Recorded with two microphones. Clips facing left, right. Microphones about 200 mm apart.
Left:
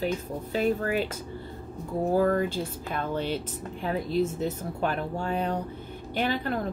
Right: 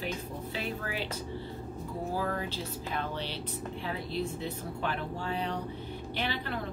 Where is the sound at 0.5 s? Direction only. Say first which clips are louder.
Left 11 dB; 45° left (ahead or behind).